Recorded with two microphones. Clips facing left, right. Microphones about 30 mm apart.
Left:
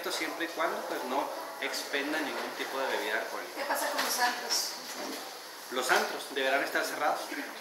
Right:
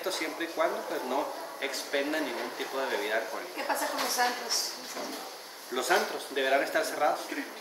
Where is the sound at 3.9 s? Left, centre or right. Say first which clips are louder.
Even; left.